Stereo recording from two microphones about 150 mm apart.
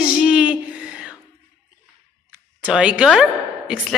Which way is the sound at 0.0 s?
5° right (ahead or behind).